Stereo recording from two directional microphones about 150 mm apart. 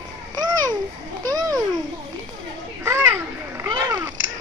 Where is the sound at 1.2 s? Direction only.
25° right (ahead or behind).